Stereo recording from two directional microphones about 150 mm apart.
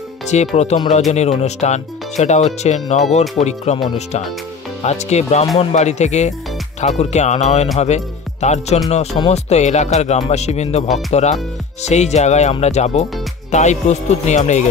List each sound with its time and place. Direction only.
0.3 s speech: 50° left (ahead or behind)
4.8 s speech: 45° left (ahead or behind)